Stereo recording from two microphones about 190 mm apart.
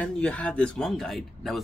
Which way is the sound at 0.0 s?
5° left (ahead or behind).